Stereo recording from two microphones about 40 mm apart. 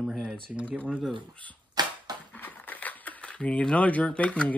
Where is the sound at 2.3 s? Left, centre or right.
Left.